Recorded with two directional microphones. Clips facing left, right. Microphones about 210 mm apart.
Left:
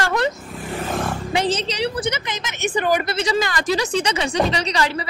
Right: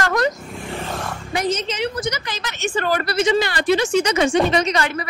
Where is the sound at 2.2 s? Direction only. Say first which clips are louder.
Left 1 dB; 20° left (ahead or behind).